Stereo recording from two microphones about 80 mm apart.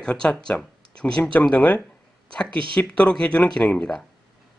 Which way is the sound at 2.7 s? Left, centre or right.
Centre.